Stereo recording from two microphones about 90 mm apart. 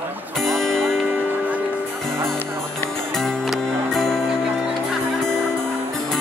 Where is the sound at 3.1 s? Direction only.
5° left (ahead or behind).